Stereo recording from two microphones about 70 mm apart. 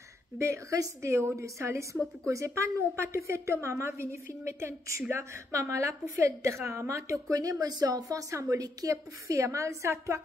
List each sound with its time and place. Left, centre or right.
0.4 s a woman's voice: right